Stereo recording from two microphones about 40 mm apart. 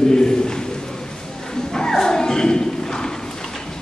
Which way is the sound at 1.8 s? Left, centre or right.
Centre.